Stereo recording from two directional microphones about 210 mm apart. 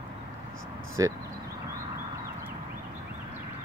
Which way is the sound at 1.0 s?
15° right (ahead or behind).